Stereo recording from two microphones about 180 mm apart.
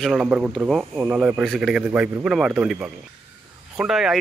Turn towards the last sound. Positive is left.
turn(degrees=-5)  # may be behind; listen again after turning